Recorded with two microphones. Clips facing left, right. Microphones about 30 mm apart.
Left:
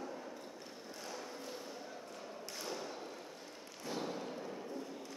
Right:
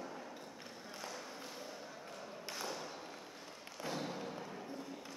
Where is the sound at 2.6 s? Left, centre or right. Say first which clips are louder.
Left 1 dB; centre.